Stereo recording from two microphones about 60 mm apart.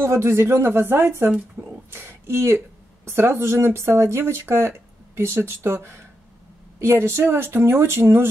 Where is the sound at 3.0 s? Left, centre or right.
Right.